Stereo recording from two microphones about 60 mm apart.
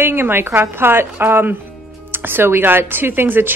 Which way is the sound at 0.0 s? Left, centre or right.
Right.